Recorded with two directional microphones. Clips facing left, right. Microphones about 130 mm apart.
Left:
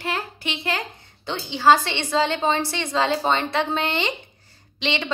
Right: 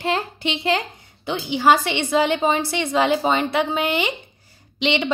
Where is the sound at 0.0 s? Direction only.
25° right (ahead or behind).